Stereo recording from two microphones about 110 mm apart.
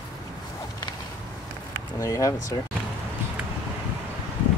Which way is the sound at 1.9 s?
30° left (ahead or behind).